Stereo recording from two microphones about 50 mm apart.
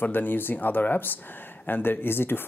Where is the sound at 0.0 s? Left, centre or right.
Left.